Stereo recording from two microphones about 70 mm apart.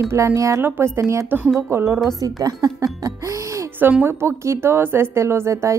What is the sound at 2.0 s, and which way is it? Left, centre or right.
Speech, right.